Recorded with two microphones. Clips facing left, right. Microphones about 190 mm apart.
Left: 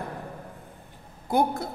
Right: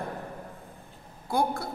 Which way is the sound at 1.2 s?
20° left (ahead or behind).